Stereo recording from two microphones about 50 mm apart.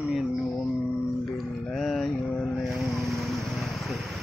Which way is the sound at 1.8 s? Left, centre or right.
Centre.